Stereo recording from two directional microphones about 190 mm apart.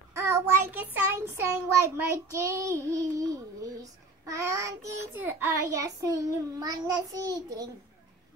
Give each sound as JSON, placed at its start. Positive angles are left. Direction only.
{"t": 0.1, "sound": "child singing", "side_deg": -15}